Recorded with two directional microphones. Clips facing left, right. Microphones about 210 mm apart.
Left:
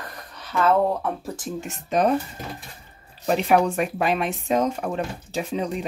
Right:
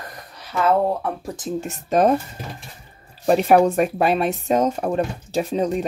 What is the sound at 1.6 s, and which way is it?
Speech, 40° right (ahead or behind).